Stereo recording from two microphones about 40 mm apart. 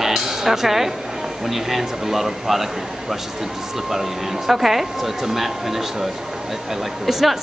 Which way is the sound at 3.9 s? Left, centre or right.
Centre.